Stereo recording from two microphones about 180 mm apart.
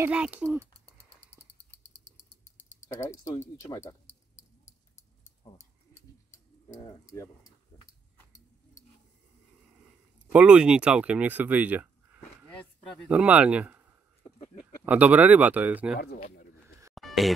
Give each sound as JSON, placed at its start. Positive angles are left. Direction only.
{"t": 0.0, "sound": "speech", "side_deg": -5}
{"t": 2.8, "sound": "speech", "side_deg": 15}
{"t": 5.4, "sound": "speech", "side_deg": 40}
{"t": 6.7, "sound": "speech", "side_deg": 20}
{"t": 10.3, "sound": "speech", "side_deg": -5}
{"t": 14.9, "sound": "speech", "side_deg": -10}
{"t": 16.9, "sound": "a sound", "side_deg": 0}